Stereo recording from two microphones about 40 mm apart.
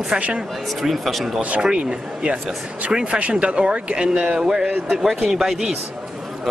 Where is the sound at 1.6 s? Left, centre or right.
Right; by 5.8 s centre.